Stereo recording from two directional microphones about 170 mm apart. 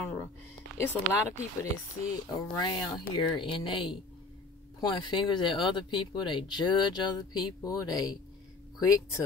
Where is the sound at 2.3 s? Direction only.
25° left (ahead or behind).